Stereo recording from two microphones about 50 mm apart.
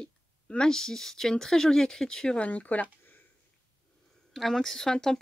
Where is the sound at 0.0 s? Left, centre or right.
Centre.